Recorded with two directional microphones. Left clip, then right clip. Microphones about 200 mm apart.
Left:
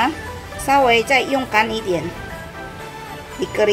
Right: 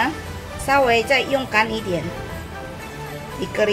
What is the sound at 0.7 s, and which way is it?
A woman's voice, 25° left (ahead or behind).